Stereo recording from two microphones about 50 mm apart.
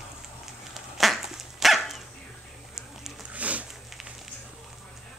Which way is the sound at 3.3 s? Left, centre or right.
Right.